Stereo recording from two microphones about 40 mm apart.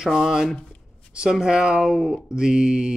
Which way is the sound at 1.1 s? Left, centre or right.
Centre.